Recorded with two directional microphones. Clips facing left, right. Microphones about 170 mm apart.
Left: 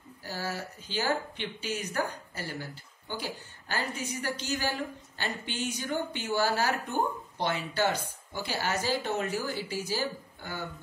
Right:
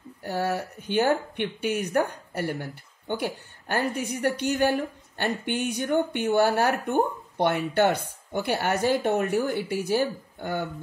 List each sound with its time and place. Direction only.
0.2 s speech: 60° right (ahead or behind)